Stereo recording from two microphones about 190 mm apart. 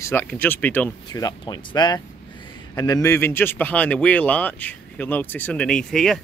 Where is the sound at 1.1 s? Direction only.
20° left (ahead or behind).